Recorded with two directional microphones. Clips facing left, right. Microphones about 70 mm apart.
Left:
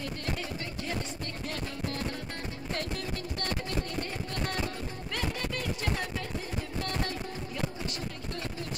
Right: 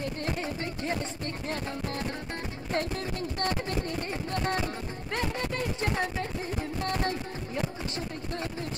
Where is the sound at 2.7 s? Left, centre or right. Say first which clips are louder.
Right 5 dB; right.